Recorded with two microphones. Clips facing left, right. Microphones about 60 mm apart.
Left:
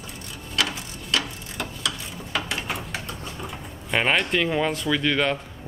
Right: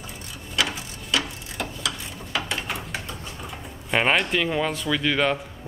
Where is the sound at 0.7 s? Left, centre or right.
Centre.